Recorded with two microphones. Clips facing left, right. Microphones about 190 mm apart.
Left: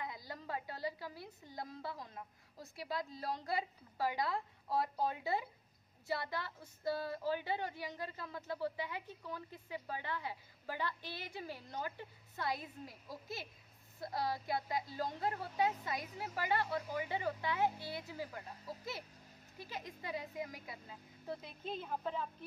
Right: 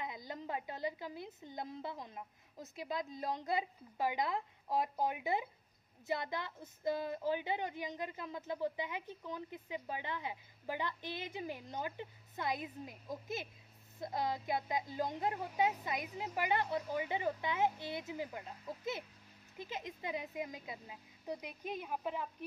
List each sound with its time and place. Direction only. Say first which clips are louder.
0.0 s a woman's voice: right 2 dB; 20° right (ahead or behind)
19.6 s a woman's voice: right 3 dB; 20° right (ahead or behind)